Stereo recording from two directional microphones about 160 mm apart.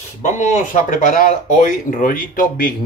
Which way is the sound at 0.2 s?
50° left (ahead or behind).